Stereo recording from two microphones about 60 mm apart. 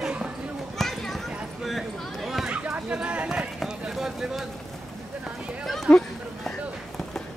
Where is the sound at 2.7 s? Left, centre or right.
Centre.